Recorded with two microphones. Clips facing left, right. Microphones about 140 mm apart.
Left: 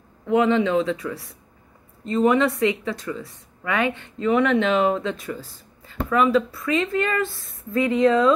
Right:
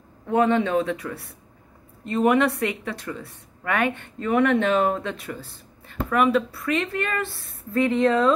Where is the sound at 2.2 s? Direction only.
60° right (ahead or behind).